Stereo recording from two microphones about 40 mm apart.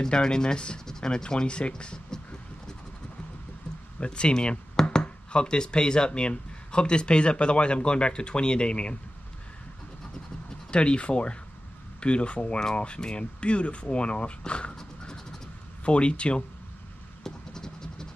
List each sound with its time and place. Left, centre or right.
0.0 s speech: centre
0.8 s a sound: centre
4.0 s speech: left
10.7 s speech: left
15.8 s speech: left
17.2 s a sound: centre